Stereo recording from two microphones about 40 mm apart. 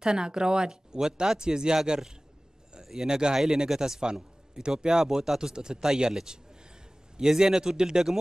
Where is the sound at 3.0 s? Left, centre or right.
Centre.